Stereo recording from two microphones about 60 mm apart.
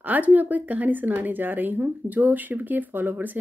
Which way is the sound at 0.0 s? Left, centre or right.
Right.